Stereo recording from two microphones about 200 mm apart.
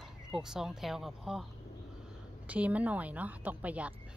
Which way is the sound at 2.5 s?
5° right (ahead or behind).